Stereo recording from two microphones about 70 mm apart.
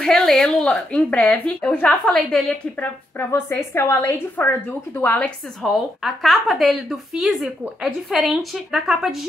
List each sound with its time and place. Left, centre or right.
0.0 s speech: centre; by 2.0 s left
2.1 s a woman's voice: centre
3.2 s a woman's voice: left
5.6 s a woman's voice: centre